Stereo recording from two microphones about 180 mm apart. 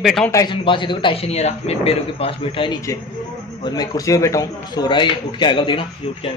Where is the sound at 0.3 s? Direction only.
20° left (ahead or behind).